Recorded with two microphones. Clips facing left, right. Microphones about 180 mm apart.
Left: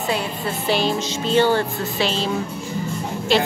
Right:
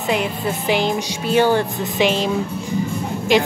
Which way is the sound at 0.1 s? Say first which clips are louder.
Right 5 dB; 15° right (ahead or behind).